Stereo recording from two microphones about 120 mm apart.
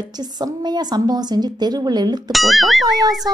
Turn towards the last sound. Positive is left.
turn(degrees=0)  # may be behind; listen again after turning